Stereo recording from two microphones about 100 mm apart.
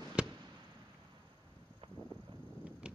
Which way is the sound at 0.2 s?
10° right (ahead or behind).